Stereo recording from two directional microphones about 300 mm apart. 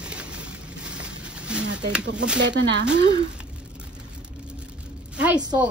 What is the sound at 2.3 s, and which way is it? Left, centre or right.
Speech, right.